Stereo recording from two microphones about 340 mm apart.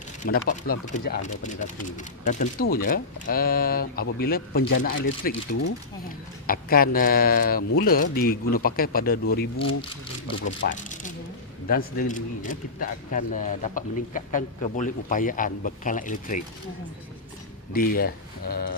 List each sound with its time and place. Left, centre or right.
0.2 s speech: left
10.7 s speech: left
17.7 s speech: left